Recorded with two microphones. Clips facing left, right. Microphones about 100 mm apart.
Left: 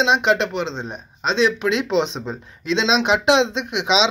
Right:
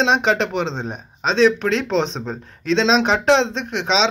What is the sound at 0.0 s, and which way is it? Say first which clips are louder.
Speech: even; 5° left (ahead or behind).